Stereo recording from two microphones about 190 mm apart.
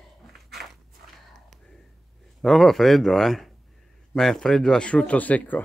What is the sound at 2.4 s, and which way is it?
Speech, centre (ahead or behind).